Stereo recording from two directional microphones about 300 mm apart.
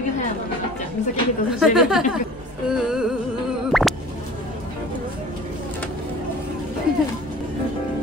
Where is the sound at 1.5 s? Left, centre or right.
Centre.